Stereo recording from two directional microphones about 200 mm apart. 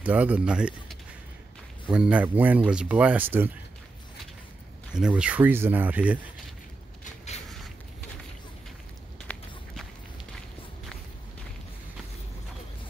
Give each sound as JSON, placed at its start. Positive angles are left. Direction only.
{"t": 0.0, "sound": "speech", "side_deg": -5}
{"t": 4.9, "sound": "speech", "side_deg": -5}